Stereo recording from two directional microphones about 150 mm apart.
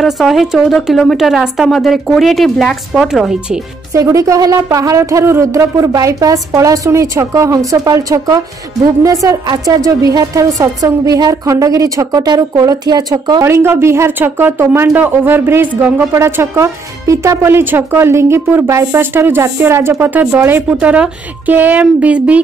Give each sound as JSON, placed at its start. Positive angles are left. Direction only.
{"t": 0.0, "sound": "a woman's voice", "side_deg": 0}
{"t": 3.9, "sound": "a woman's voice", "side_deg": -20}